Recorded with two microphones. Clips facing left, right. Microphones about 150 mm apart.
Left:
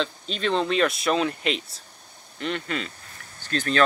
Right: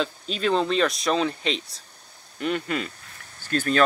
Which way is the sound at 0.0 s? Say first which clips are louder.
Right 1 dB; 5° right (ahead or behind).